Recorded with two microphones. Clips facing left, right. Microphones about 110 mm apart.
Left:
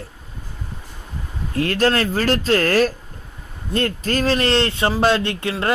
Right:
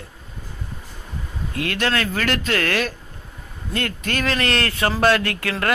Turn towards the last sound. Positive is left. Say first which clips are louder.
# left 2 dB
turn(degrees=20)  # may be behind; listen again after turning